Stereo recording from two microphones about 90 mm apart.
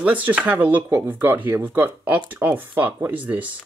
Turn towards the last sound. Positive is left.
turn(degrees=-15)  # may be behind; listen again after turning